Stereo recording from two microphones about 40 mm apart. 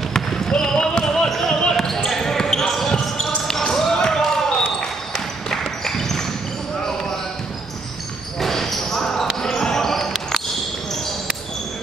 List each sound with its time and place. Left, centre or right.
0.1 s basketball bounce: centre
1.6 s a sound: centre
2.0 s basketball bounce: centre
8.4 s basketball bounce: centre